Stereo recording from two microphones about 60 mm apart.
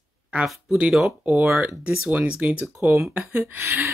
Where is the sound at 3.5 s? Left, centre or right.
Right.